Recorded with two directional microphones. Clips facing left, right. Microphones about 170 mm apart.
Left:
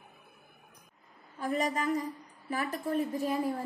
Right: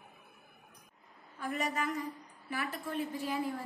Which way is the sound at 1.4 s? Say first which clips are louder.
Left 4 dB; 35° left (ahead or behind).